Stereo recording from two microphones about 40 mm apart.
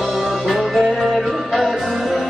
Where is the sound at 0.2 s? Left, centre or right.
Centre.